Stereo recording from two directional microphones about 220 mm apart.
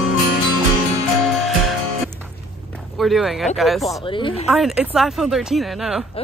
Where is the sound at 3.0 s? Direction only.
Centre (ahead or behind).